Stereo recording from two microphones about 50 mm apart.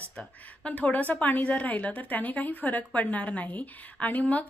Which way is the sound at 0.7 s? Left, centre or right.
Left.